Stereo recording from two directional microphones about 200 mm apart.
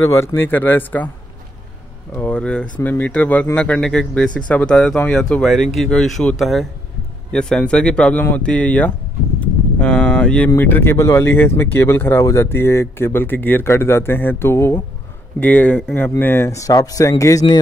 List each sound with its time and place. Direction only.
0.0 s speech: 15° left (ahead or behind)
2.1 s speech: 5° left (ahead or behind)